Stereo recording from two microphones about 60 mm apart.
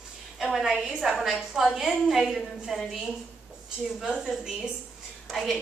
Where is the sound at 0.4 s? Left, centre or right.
Centre.